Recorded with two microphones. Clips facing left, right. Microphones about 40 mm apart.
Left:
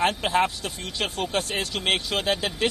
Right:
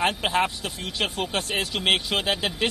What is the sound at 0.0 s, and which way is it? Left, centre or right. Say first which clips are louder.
Speech: left 1 dB; centre.